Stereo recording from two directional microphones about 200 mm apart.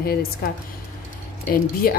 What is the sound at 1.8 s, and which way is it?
Speech, 45° left (ahead or behind).